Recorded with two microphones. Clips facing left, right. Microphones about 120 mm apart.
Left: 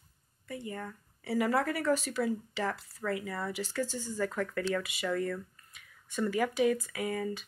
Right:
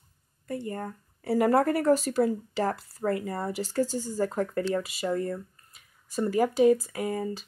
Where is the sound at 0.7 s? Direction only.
40° right (ahead or behind).